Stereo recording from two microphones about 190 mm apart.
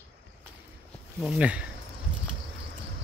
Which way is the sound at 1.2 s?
5° right (ahead or behind).